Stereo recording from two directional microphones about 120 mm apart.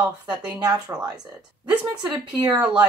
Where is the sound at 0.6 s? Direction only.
35° right (ahead or behind).